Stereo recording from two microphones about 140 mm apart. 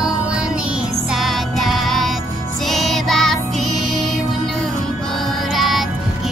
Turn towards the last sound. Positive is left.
turn(degrees=0)  # may be behind; listen again after turning